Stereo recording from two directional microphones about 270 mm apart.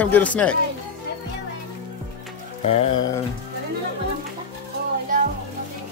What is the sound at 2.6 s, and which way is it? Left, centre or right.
Music, left.